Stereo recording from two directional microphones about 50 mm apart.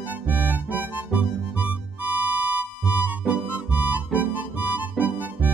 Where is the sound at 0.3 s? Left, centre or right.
Right.